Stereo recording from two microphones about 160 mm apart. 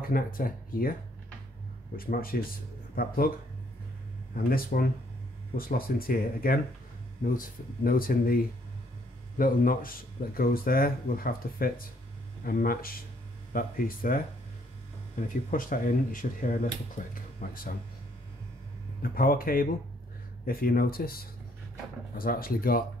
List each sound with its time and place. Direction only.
0.0 s speech: 65° left (ahead or behind)
2.0 s speech: 65° left (ahead or behind)
4.4 s speech: 65° left (ahead or behind)
19.0 s speech: 65° left (ahead or behind)